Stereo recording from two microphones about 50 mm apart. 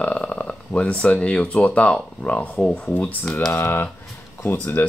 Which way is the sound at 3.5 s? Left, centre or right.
Left.